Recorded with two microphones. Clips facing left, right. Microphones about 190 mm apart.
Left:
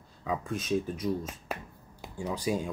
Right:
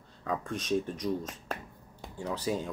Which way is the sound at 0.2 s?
5° left (ahead or behind).